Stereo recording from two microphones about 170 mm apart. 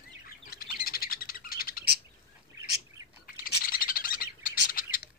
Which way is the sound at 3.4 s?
55° left (ahead or behind).